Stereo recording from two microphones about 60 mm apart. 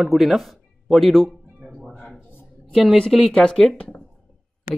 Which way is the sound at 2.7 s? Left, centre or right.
Centre.